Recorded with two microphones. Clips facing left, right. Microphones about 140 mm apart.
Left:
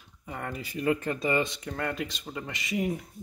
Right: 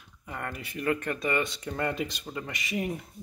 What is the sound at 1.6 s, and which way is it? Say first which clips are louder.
Speech: right 2 dB; centre (ahead or behind).